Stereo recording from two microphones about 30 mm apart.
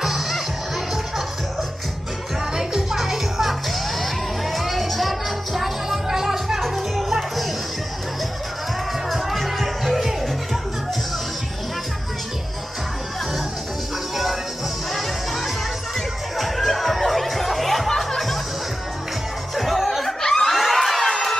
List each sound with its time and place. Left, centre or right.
0.0 s music: centre
2.5 s music: centre
5.9 s music: centre
9.1 s music: centre
14.9 s music: centre
19.5 s music: centre
20.1 s laughter: centre
20.4 s a sound: centre